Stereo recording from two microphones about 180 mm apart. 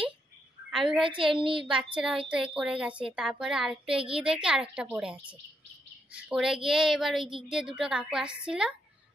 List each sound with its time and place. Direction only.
1.0 s a woman's voice: 30° right (ahead or behind)
2.0 s speech: 5° right (ahead or behind)